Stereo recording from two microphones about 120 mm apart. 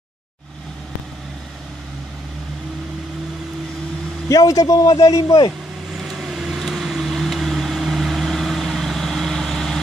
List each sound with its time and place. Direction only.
4.3 s a man's voice: 30° left (ahead or behind)
5.9 s vehicle: centre (ahead or behind)